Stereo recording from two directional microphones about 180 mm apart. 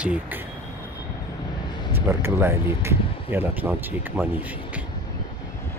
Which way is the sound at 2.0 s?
15° right (ahead or behind).